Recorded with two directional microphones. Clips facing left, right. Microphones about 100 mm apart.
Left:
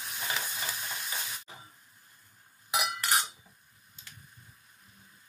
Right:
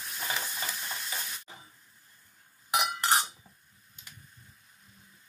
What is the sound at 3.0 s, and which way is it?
Cutlery, 35° right (ahead or behind).